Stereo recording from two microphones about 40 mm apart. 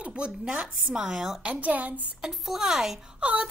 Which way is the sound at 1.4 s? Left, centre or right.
Right.